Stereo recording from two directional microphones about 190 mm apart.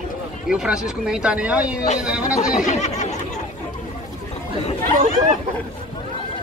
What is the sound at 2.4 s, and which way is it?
Speech, 40° left (ahead or behind).